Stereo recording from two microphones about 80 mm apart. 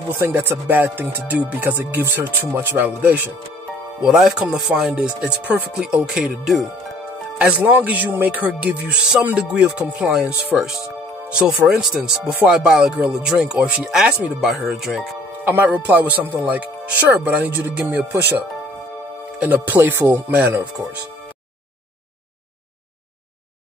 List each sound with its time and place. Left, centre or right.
0.2 s speech: right
4.0 s speech: centre
7.3 s speech: centre
10.5 s speech: centre
15.4 s speech: right
19.4 s speech: right